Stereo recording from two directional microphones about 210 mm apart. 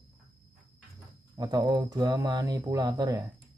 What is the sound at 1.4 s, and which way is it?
Speech, 20° right (ahead or behind).